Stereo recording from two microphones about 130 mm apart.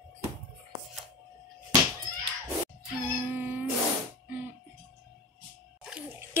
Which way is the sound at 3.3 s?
15° right (ahead or behind).